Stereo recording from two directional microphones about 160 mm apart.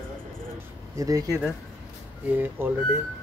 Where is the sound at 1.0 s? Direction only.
20° right (ahead or behind).